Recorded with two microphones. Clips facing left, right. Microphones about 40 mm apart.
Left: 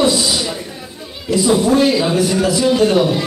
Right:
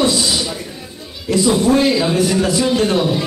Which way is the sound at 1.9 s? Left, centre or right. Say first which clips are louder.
Even; centre.